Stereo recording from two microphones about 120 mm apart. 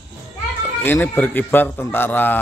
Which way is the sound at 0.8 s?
15° left (ahead or behind).